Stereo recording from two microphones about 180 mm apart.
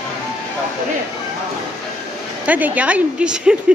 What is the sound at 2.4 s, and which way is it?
A woman's voice, 10° right (ahead or behind).